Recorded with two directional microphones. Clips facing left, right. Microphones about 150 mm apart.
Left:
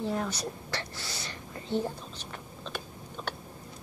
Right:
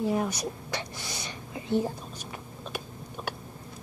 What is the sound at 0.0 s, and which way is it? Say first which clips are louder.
Whispering: right 4 dB; 10° right (ahead or behind).